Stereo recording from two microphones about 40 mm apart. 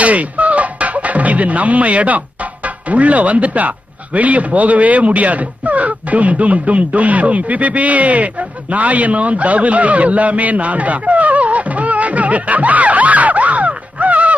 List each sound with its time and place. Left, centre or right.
0.0 s speech: right